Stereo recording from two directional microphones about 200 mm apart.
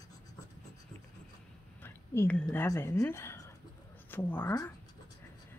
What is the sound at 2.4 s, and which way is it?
Speech, 15° left (ahead or behind).